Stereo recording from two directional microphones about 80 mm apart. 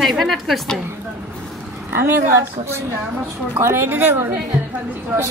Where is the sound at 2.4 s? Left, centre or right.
Right.